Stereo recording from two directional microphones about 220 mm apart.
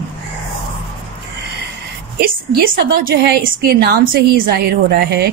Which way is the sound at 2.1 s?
45° right (ahead or behind).